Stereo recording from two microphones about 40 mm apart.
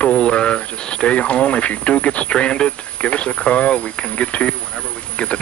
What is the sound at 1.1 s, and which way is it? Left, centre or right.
Speech, left.